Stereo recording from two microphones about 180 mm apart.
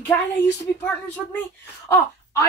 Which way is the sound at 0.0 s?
15° left (ahead or behind).